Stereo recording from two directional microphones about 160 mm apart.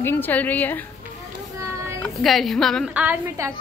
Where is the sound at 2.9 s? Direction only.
10° right (ahead or behind).